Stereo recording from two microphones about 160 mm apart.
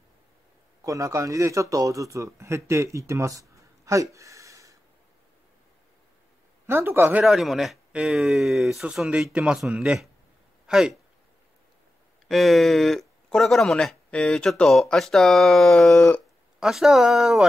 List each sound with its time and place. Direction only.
0.8 s speech: 20° right (ahead or behind)
6.7 s speech: 15° right (ahead or behind)
7.2 s speech: centre (ahead or behind)
12.3 s speech: centre (ahead or behind)